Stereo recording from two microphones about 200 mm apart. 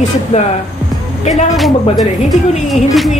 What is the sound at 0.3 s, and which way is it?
Speech, 35° left (ahead or behind).